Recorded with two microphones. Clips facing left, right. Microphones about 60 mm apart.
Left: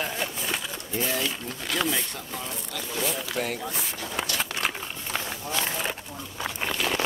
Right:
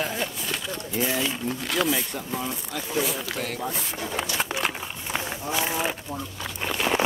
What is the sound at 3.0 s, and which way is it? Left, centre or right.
Speech, centre.